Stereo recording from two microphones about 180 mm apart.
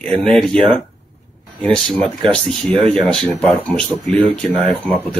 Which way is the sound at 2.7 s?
30° right (ahead or behind).